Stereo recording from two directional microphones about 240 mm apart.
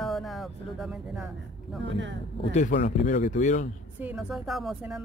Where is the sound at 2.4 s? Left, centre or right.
Left.